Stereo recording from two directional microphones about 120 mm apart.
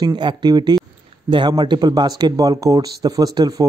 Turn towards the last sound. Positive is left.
turn(degrees=-35)  # may be behind; listen again after turning